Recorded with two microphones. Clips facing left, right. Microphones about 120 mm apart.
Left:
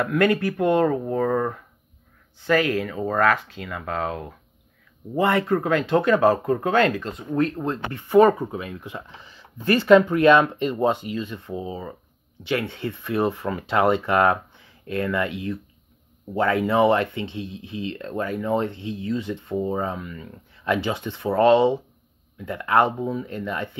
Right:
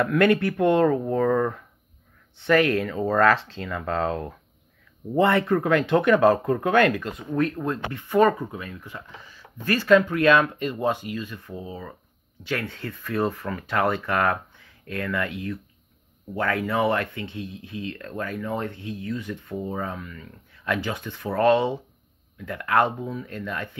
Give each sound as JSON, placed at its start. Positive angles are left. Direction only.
{"t": 0.0, "sound": "speech", "side_deg": 20}
{"t": 5.2, "sound": "speech", "side_deg": 25}
{"t": 7.9, "sound": "speech", "side_deg": 15}
{"t": 16.3, "sound": "speech", "side_deg": 20}